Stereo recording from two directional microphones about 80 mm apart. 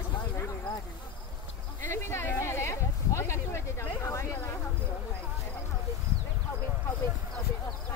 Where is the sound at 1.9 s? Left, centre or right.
Left.